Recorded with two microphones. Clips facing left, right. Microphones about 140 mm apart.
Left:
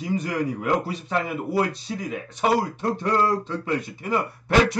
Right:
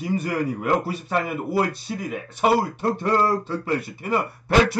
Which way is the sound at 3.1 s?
30° right (ahead or behind).